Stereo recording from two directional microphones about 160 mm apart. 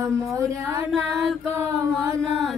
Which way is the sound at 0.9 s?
Centre (ahead or behind).